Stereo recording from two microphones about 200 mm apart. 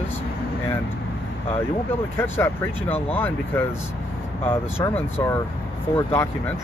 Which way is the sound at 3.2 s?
10° left (ahead or behind).